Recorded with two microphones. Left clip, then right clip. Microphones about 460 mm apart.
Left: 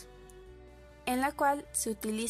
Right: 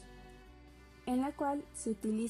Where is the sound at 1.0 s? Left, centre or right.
Left.